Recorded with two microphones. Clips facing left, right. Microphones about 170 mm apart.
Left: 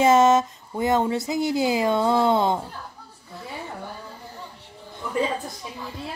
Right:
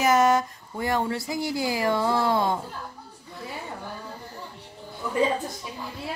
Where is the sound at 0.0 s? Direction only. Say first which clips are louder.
Left 4 dB; 25° left (ahead or behind).